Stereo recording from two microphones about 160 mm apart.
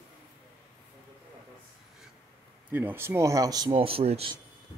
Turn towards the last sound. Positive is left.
turn(degrees=-35)  # may be behind; listen again after turning